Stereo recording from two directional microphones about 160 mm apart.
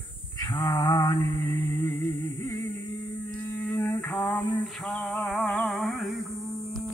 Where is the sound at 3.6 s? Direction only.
10° left (ahead or behind).